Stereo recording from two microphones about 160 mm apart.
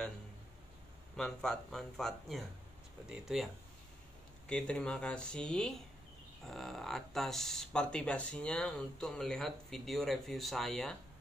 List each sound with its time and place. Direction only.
1.1 s speech: 5° left (ahead or behind)
4.5 s speech: 5° left (ahead or behind)